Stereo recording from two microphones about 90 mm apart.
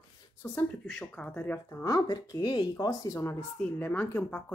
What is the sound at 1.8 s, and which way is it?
Speech, 45° left (ahead or behind).